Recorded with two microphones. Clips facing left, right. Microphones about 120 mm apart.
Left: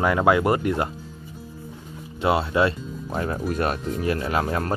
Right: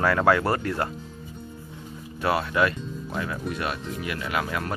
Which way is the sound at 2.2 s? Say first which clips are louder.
Left 3 dB; 25° left (ahead or behind).